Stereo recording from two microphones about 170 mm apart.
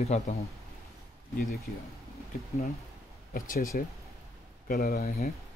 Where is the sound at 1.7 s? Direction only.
65° left (ahead or behind).